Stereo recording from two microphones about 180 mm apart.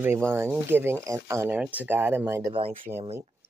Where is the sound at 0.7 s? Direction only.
15° right (ahead or behind).